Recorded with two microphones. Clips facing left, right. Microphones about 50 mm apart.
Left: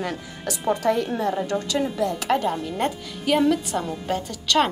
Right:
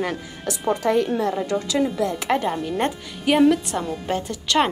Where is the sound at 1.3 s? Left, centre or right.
Centre.